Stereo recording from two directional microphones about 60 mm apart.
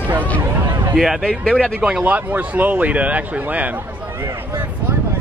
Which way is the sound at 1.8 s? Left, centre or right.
Centre.